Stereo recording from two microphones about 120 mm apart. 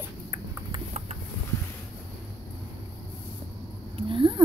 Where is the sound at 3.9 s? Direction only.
45° right (ahead or behind).